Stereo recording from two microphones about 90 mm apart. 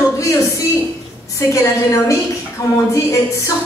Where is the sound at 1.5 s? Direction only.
35° left (ahead or behind).